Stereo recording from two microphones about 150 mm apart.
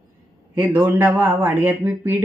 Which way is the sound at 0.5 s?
10° right (ahead or behind).